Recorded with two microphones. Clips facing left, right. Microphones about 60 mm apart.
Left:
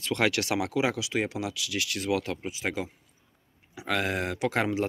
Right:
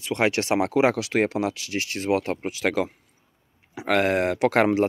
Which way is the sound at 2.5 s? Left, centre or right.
Right.